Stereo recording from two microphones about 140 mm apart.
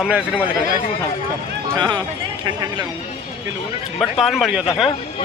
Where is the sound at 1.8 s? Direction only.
30° right (ahead or behind).